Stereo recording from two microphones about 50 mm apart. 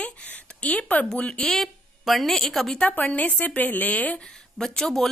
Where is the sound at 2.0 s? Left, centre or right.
Centre.